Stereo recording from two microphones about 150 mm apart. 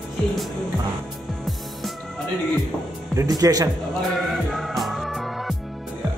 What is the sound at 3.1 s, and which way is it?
Speech, 25° right (ahead or behind).